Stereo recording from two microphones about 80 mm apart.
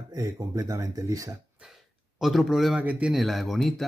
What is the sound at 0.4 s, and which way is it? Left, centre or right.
Speech, right.